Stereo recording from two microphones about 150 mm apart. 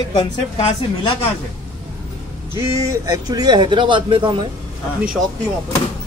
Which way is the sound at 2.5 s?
20° right (ahead or behind).